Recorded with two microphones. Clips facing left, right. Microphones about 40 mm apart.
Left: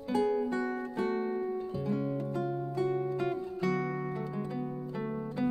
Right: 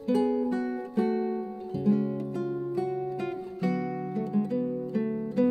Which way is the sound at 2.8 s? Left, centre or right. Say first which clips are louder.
Left 4 dB; left.